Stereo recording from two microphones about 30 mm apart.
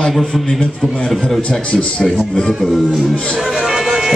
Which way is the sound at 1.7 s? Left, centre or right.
Left.